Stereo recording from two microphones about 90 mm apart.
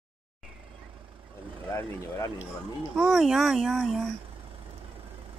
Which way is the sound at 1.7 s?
35° left (ahead or behind).